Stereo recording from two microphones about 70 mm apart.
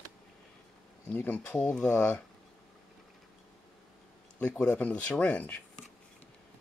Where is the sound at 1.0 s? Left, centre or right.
Left.